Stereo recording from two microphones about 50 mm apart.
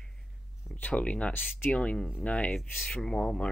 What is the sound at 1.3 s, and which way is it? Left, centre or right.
Speech, left.